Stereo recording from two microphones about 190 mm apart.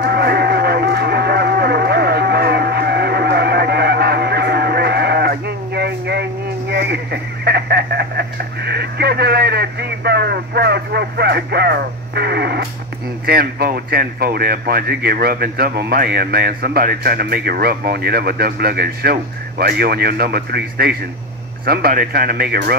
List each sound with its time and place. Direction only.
0.0 s a sound: 55° right (ahead or behind)
6.7 s radio: 60° right (ahead or behind)
13.3 s speech: 55° right (ahead or behind)